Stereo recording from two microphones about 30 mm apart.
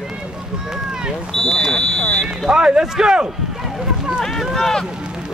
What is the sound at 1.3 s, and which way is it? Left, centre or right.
Speech, centre.